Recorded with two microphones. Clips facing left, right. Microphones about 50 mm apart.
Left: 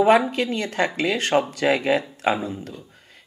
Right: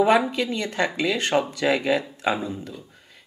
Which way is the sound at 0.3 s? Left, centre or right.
Left.